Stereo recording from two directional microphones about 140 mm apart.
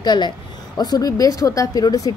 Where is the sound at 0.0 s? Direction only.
30° left (ahead or behind).